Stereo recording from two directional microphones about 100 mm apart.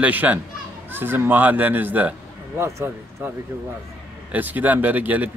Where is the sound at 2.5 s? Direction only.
30° right (ahead or behind).